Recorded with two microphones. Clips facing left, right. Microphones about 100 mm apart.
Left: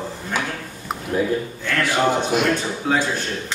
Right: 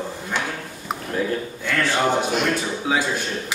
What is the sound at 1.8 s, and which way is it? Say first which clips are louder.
Speech: left 1 dB; 10° left (ahead or behind).